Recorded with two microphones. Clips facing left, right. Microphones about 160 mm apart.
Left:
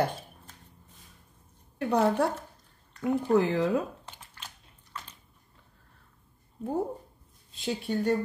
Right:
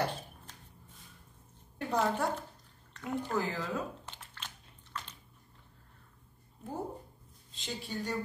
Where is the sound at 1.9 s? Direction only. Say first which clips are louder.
Left 6 dB; 65° left (ahead or behind).